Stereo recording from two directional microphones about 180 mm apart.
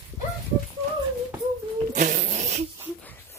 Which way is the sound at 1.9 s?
45° right (ahead or behind).